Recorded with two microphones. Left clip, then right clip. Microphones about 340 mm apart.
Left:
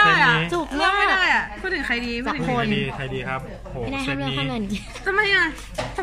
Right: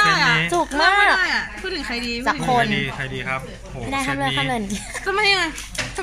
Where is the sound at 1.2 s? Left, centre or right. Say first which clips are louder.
Left 1 dB; centre.